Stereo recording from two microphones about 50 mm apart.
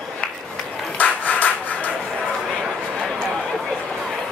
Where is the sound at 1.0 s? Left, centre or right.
Left.